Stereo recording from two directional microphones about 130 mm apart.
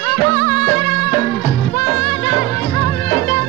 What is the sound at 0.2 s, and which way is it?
Music, 10° left (ahead or behind).